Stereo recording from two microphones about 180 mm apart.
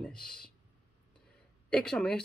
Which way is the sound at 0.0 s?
5° left (ahead or behind).